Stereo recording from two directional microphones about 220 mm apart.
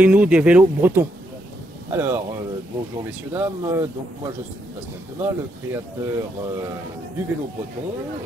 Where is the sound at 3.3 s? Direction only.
15° right (ahead or behind).